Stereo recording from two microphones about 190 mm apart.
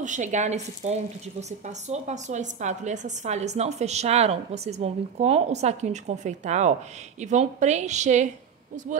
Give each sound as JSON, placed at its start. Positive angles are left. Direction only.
{"t": 0.0, "sound": "a woman's voice", "side_deg": -40}